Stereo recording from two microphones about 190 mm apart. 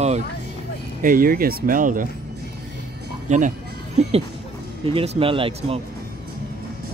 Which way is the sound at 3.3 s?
40° right (ahead or behind).